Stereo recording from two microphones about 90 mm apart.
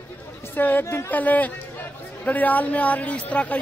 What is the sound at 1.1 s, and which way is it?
Speech, 20° left (ahead or behind).